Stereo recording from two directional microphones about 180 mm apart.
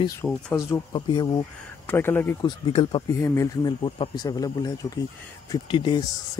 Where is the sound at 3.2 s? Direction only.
15° left (ahead or behind).